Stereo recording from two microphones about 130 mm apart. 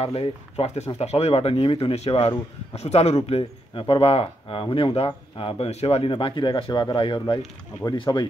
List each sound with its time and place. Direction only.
0.0 s speech: 50° left (ahead or behind); by 8.3 s 35° left (ahead or behind)